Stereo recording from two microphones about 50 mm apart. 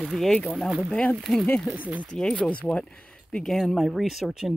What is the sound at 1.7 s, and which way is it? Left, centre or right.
Speech, right.